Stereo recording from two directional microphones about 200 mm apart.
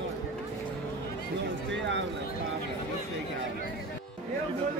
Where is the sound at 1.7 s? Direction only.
65° right (ahead or behind).